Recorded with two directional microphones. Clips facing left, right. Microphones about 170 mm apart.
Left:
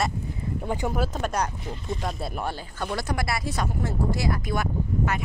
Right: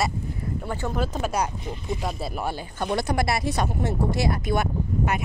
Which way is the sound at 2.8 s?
25° right (ahead or behind).